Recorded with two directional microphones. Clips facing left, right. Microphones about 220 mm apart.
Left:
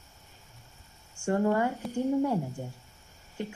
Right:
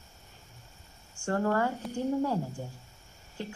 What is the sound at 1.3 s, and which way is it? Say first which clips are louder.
Speech: left 2 dB; 15° left (ahead or behind).